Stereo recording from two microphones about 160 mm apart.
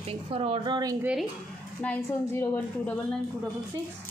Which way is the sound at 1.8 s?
10° left (ahead or behind).